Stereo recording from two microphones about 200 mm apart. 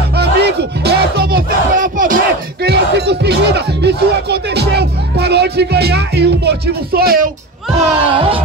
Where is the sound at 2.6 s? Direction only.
55° right (ahead or behind).